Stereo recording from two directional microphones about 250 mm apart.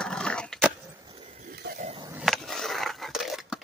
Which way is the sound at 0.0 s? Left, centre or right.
Centre.